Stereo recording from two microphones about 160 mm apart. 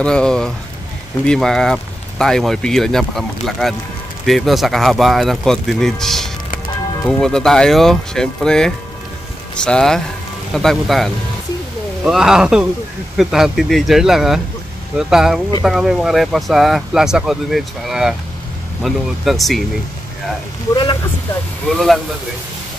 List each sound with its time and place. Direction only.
0.0 s speech: 5° left (ahead or behind)
20.7 s speech: 30° left (ahead or behind)